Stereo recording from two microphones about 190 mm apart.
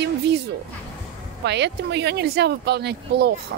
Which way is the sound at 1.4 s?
65° right (ahead or behind).